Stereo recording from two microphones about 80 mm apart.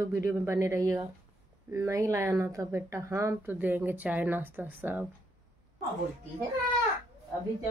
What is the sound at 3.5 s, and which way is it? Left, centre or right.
A woman's voice, right.